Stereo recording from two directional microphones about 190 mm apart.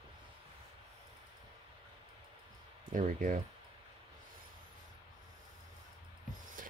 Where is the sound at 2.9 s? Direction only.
45° right (ahead or behind).